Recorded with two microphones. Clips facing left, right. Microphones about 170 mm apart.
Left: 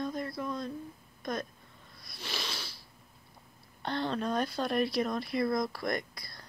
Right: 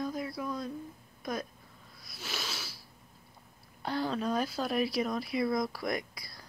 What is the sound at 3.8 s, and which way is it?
Speech, 5° right (ahead or behind).